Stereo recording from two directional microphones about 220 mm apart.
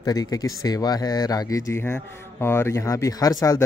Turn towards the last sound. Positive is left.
turn(degrees=15)  # may be behind; listen again after turning